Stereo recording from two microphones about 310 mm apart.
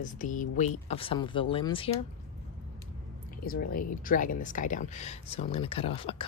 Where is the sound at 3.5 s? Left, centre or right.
Left.